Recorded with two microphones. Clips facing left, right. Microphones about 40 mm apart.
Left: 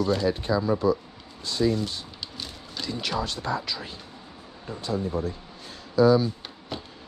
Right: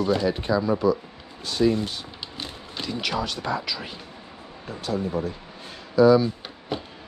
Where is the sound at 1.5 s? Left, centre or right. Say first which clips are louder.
Right 3 dB; right.